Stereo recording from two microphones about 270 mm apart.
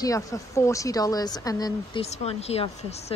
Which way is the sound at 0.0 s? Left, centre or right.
Centre.